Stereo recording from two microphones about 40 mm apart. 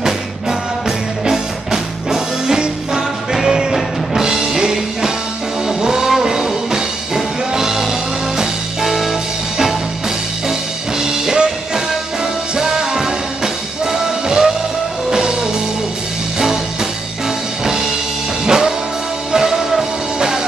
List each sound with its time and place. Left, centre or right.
0.0 s music: centre
18.4 s music: centre